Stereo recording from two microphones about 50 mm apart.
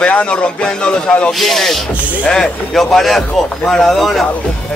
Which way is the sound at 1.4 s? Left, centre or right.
Centre.